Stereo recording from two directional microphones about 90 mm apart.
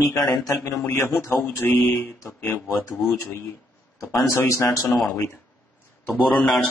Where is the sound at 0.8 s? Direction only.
25° left (ahead or behind).